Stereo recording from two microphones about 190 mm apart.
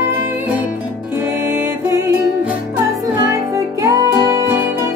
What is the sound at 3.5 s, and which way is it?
Music, 15° right (ahead or behind).